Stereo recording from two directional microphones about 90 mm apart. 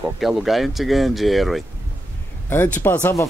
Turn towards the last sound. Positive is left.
turn(degrees=25)  # may be behind; listen again after turning